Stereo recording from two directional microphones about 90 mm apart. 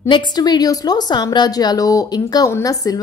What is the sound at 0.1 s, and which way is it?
A woman's voice, 50° left (ahead or behind).